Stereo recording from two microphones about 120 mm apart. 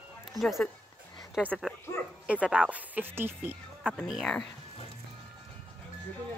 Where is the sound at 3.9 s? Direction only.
Centre (ahead or behind).